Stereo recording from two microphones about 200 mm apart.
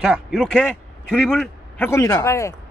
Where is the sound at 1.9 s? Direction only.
15° left (ahead or behind).